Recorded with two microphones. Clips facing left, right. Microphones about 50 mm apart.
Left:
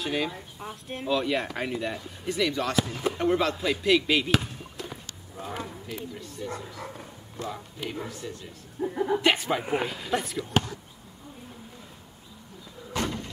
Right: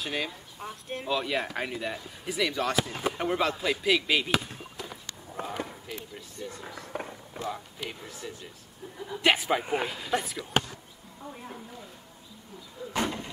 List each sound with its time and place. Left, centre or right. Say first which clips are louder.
0.0 s speech: left 4 dB; centre
5.4 s a sound: right 1 dB; right
5.9 s speech: left 3 dB; centre
6.4 s speech: left 4 dB; centre
8.8 s speech: left 12 dB; left
9.2 s speech: even; centre
12.9 s vehicle: even; centre